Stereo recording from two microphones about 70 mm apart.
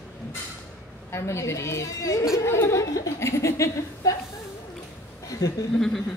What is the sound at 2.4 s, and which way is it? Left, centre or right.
A woman's voice, left.